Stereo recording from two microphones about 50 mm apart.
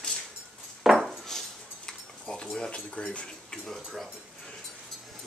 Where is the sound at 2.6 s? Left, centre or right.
Centre.